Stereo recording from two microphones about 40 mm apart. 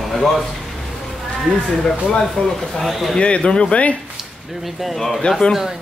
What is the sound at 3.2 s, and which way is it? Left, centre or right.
Speech, left.